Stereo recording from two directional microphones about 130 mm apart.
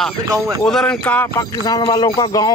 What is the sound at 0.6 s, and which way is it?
Speech, 5° left (ahead or behind).